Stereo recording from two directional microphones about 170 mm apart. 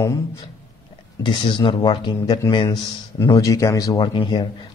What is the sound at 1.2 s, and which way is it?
A man's voice, 30° left (ahead or behind).